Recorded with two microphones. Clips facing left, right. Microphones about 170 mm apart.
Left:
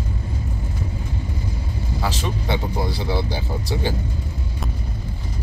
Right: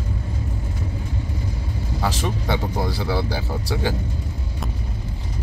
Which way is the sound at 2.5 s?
15° left (ahead or behind).